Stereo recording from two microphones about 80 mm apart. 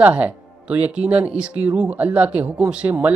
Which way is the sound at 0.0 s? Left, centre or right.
Centre.